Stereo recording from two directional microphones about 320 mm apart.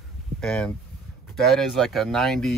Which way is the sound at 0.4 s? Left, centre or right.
Centre.